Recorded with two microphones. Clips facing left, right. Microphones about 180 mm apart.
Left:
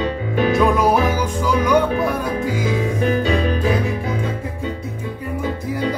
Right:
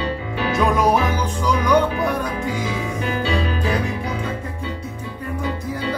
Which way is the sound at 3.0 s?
45° left (ahead or behind).